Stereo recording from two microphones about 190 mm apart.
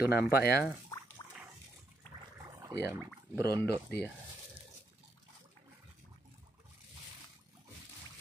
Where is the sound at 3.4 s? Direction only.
20° right (ahead or behind).